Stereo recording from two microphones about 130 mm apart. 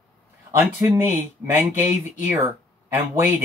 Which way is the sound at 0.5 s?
25° right (ahead or behind).